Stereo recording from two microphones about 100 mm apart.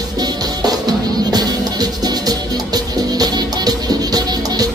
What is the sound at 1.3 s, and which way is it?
Music, 40° right (ahead or behind).